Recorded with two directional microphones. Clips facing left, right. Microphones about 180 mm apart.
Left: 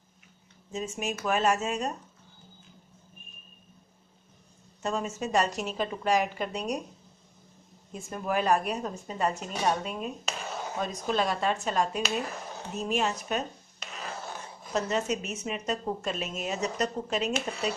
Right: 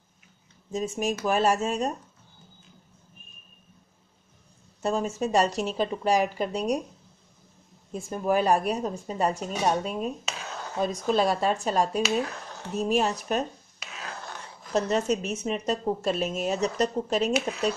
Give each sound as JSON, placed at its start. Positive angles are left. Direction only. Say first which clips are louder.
{"t": 0.7, "sound": "speech", "louder": "right 5 dB", "side_deg": -35}
{"t": 4.8, "sound": "speech", "louder": "right 4 dB", "side_deg": -35}
{"t": 7.9, "sound": "speech", "louder": "right 5 dB", "side_deg": -35}
{"t": 10.2, "sound": "a sound", "louder": "left 1 dB", "side_deg": 5}
{"t": 11.1, "sound": "speech", "louder": "right 3 dB", "side_deg": -35}
{"t": 12.0, "sound": "speech", "louder": "right 5 dB", "side_deg": 5}
{"t": 12.8, "sound": "speech", "louder": "right 4 dB", "side_deg": -35}
{"t": 13.7, "sound": "a sound", "louder": "left 1 dB", "side_deg": 0}
{"t": 15.2, "sound": "speech", "louder": "right 5 dB", "side_deg": -35}
{"t": 17.5, "sound": "speech", "louder": "right 4 dB", "side_deg": 0}